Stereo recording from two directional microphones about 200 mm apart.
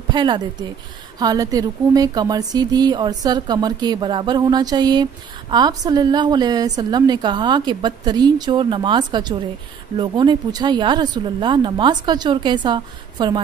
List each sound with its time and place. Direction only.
0.1 s a woman's voice: 20° right (ahead or behind)